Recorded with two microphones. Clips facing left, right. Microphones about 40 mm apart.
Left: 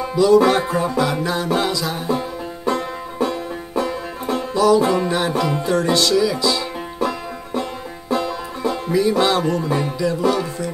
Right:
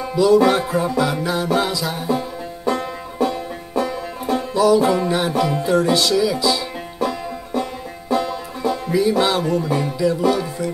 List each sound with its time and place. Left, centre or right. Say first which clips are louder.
0.0 s music: left 1 dB; centre
3.2 s banjo: right 1 dB; centre
4.6 s music: even; centre